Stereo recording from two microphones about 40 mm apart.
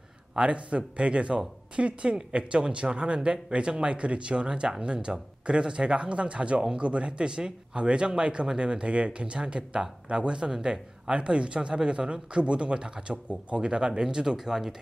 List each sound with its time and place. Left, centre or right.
0.4 s speech: right; by 14.8 s centre